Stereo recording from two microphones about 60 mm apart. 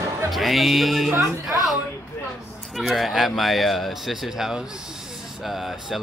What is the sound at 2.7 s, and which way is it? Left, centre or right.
Speech, centre.